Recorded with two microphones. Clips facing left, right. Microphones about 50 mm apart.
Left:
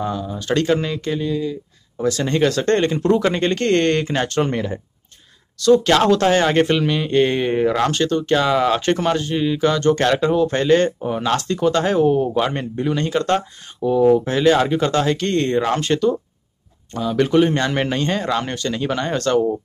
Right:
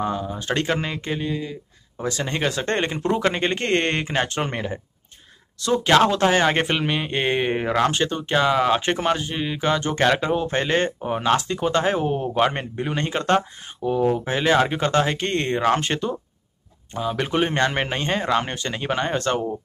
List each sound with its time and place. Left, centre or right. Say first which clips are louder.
0.0 s speech: left 1 dB; right
5.9 s speech: left 2 dB; centre
16.9 s speech: left 7 dB; centre